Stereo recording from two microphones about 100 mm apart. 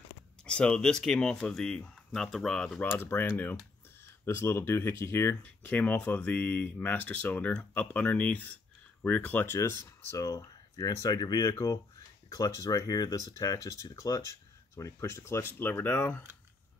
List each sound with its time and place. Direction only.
0.5 s speech: 10° left (ahead or behind); by 5.3 s 25° left (ahead or behind)
5.3 s speech: 15° left (ahead or behind)
9.6 s speech: 30° left (ahead or behind)
10.2 s speech: 40° left (ahead or behind); by 16.2 s 20° left (ahead or behind)